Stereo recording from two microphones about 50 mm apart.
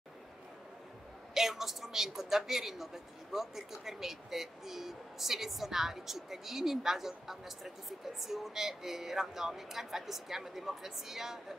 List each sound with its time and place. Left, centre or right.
1.3 s a woman's voice: centre